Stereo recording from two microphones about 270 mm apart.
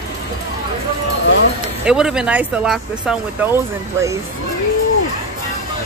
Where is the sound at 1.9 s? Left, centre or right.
Centre.